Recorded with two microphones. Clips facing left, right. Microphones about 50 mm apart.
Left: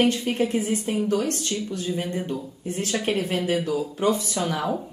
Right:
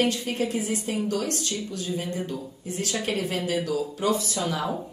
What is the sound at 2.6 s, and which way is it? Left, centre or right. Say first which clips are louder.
A woman's voice: left 3 dB; left.